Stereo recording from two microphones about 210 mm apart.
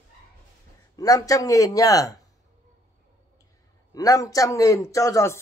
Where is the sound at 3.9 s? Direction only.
15° left (ahead or behind).